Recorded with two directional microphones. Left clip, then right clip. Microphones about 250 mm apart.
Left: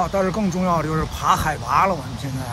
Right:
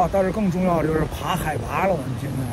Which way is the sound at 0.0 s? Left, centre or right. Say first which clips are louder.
Right 1 dB; centre.